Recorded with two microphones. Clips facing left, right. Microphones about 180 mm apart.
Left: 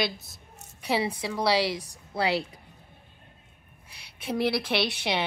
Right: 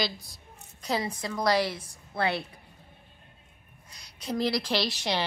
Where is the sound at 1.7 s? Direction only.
35° left (ahead or behind).